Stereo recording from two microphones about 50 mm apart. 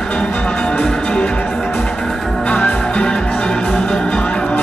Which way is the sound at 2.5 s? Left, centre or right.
Left.